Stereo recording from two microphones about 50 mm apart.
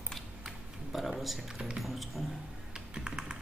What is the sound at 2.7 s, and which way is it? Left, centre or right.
Computer keyboard, centre.